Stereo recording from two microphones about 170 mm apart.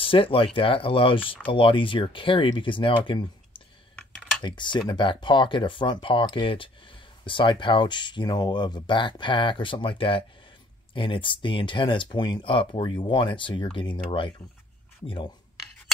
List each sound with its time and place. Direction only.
0.0 s speech: 30° left (ahead or behind)